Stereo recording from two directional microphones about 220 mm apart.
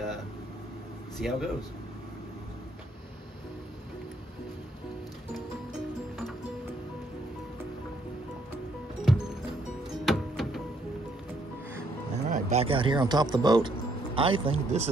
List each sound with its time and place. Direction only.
1.1 s speech: centre (ahead or behind)
9.1 s music: centre (ahead or behind)
12.3 s speech: 35° right (ahead or behind)